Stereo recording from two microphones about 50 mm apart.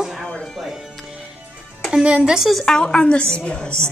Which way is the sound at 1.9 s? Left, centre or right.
Centre.